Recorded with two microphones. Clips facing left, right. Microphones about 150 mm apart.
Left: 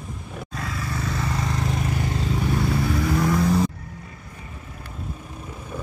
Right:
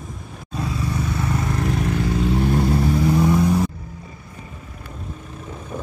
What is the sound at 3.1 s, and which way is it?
Vehicle, 15° right (ahead or behind).